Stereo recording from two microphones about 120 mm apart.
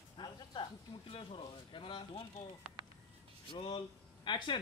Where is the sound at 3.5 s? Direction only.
40° left (ahead or behind).